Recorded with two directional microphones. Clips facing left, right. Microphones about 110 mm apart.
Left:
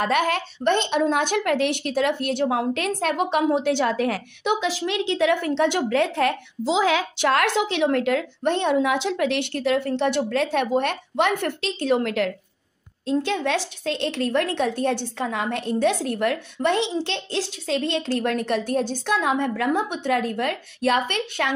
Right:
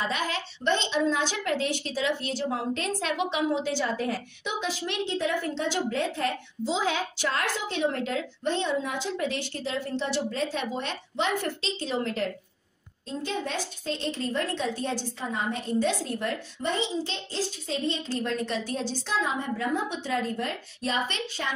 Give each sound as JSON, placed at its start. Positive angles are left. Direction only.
{"t": 0.0, "sound": "a woman's voice", "side_deg": 60}
{"t": 13.0, "sound": "a woman's voice", "side_deg": 80}